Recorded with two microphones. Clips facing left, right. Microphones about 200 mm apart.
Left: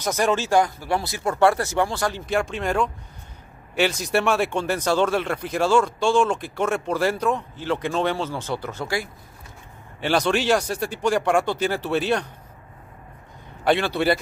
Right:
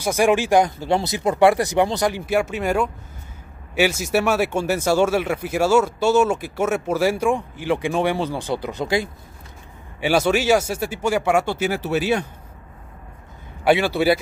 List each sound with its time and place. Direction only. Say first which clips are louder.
0.0 s speech: right 4 dB; 10° right (ahead or behind)
9.9 s speech: right 3 dB; 10° right (ahead or behind)
13.7 s speech: right 3 dB; 5° right (ahead or behind)